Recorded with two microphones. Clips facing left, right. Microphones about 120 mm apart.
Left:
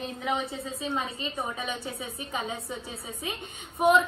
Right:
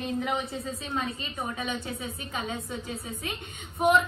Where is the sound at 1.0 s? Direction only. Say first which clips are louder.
Even; 25° left (ahead or behind).